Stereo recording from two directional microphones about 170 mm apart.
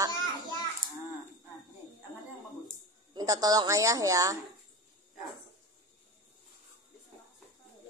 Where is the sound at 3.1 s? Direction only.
20° right (ahead or behind).